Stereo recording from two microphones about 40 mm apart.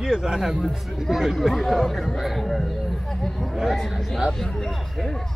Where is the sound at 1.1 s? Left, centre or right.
Centre.